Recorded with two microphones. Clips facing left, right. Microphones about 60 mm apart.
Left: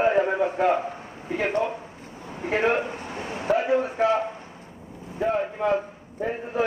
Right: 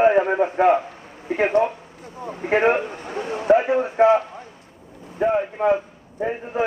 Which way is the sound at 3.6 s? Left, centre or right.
Right.